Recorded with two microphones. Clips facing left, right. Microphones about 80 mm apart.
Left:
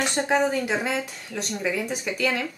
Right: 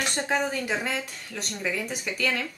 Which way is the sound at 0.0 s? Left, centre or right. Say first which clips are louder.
Left 4 dB; centre.